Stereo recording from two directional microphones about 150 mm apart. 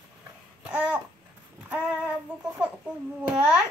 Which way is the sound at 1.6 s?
10° right (ahead or behind).